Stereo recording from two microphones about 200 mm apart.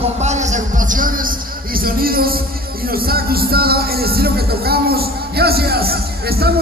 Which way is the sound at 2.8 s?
50° right (ahead or behind).